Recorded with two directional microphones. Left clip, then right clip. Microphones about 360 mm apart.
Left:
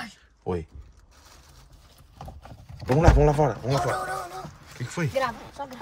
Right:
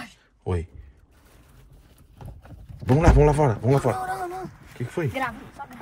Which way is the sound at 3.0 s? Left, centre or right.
Centre.